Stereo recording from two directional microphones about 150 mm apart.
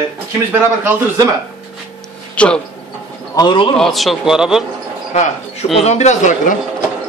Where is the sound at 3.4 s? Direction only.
35° left (ahead or behind).